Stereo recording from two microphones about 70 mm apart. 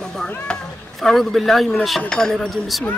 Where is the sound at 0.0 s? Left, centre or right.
Centre.